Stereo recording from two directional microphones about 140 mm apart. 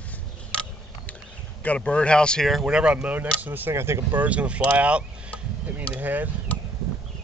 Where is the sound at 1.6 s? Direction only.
10° left (ahead or behind); by 6.3 s 10° right (ahead or behind).